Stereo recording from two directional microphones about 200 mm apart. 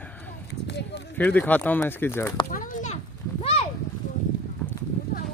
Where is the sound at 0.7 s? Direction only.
60° left (ahead or behind).